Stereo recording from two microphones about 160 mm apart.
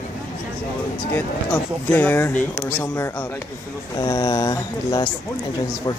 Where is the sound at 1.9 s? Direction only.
10° left (ahead or behind).